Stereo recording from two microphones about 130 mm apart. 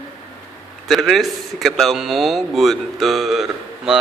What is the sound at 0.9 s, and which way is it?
A man's voice, centre (ahead or behind).